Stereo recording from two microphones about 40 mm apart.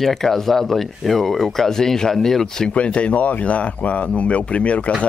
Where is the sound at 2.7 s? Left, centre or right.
Left.